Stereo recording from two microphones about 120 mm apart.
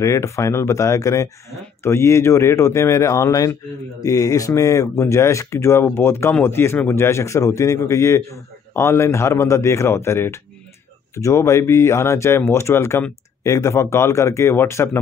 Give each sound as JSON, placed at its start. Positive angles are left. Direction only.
{"t": 0.0, "sound": "a man's voice", "side_deg": 25}